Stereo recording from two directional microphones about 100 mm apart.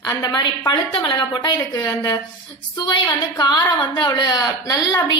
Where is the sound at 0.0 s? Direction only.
40° left (ahead or behind).